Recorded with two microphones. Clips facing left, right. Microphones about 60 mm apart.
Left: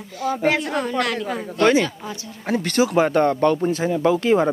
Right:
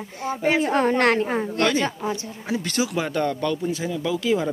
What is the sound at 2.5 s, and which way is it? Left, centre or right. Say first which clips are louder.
Speech: left 5 dB; left.